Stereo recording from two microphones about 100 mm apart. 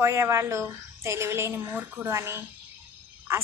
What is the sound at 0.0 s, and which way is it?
A woman's voice, 25° right (ahead or behind).